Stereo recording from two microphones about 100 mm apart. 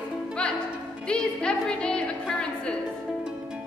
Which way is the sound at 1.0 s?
10° left (ahead or behind).